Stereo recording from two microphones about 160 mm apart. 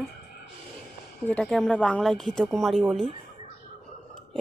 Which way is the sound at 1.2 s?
5° left (ahead or behind).